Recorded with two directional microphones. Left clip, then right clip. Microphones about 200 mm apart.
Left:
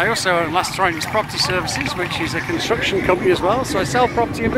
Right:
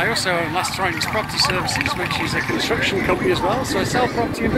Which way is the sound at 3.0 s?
35° left (ahead or behind).